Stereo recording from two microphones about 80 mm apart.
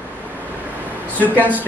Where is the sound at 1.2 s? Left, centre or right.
Left.